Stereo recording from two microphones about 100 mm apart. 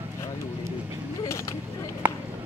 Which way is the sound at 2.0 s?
15° right (ahead or behind).